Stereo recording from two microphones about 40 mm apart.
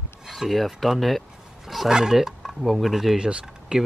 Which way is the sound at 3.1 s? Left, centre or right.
Right.